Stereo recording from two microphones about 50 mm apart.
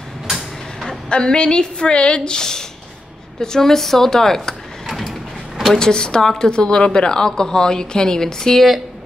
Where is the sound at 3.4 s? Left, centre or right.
Centre.